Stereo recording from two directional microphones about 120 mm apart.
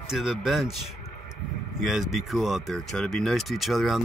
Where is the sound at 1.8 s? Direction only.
5° right (ahead or behind).